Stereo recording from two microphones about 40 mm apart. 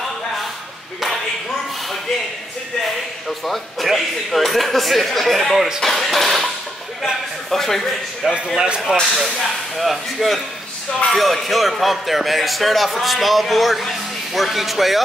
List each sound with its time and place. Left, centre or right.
3.3 s speech: centre
7.5 s speech: centre
8.5 s speech: right
9.8 s speech: centre